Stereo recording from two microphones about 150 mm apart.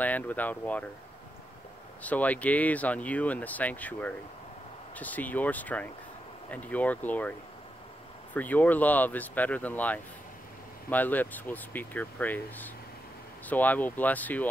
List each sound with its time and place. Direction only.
0.0 s speech: 10° left (ahead or behind)
2.0 s speech: 10° left (ahead or behind)
8.4 s speech: 10° left (ahead or behind)